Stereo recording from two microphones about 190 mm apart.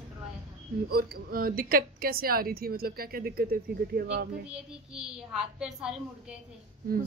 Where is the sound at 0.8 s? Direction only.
55° right (ahead or behind).